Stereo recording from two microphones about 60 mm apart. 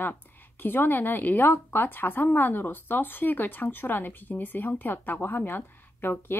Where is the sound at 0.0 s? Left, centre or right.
Left.